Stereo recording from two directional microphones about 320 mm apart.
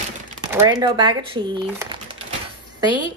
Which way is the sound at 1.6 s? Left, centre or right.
Centre.